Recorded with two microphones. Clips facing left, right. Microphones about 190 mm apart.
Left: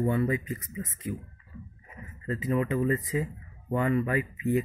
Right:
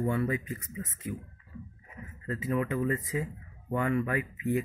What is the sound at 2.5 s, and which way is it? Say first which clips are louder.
Speech: left 3 dB; 15° left (ahead or behind).